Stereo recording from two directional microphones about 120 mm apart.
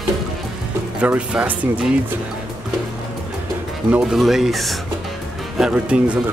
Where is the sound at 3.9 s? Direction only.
5° right (ahead or behind).